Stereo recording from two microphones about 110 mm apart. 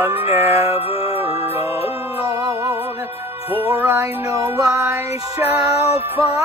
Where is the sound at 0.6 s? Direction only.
60° left (ahead or behind).